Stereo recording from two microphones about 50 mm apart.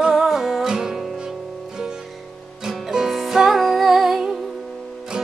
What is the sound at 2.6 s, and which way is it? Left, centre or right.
Music, centre.